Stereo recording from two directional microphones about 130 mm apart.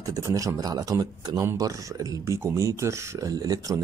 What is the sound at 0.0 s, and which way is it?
Speech, 25° right (ahead or behind).